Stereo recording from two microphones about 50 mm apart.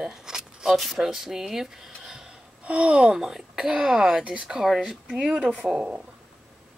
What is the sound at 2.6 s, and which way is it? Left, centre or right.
Speech, right.